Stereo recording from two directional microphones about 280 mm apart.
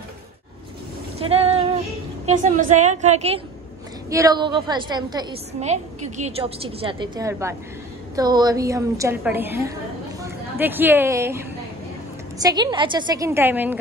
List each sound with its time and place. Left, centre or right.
1.2 s female singing: right
2.2 s a woman's voice: right; by 13.7 s centre